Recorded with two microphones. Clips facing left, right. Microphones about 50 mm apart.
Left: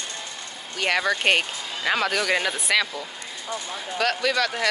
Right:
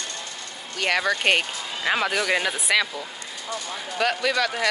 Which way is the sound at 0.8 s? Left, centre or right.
Centre.